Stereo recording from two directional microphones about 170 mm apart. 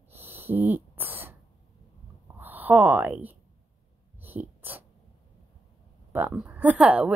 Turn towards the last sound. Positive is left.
turn(degrees=-5)  # may be behind; listen again after turning